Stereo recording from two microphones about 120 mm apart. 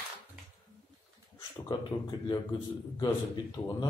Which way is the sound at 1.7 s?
35° left (ahead or behind).